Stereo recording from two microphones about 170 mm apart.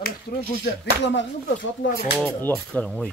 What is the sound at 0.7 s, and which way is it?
Speech, 80° left.